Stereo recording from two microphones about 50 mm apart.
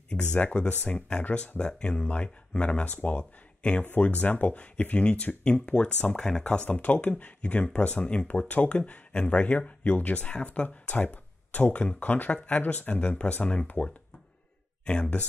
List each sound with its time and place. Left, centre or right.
0.1 s speech: left
6.4 s speech: left
12.3 s speech: left